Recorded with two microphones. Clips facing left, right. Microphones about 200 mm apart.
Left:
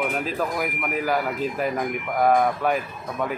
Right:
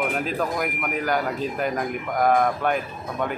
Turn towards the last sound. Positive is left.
turn(degrees=0)  # may be behind; listen again after turning